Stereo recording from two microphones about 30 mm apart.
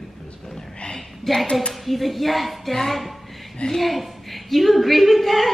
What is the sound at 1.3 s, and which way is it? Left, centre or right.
A woman's voice, centre.